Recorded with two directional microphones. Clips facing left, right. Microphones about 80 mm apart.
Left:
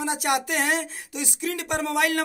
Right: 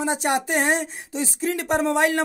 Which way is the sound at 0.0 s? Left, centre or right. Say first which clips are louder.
Right 2 dB; right.